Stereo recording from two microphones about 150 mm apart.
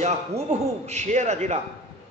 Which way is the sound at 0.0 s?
50° right (ahead or behind).